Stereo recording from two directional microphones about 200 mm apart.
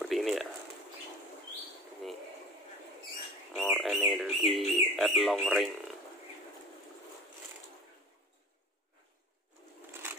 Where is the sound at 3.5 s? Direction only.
Centre (ahead or behind).